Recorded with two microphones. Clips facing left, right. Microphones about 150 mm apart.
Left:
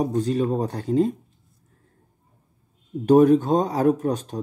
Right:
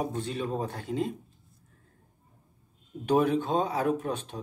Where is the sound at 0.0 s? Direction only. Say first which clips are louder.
Left 9 dB; 40° left (ahead or behind).